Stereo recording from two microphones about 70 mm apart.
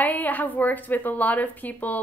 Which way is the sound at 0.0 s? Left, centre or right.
Left.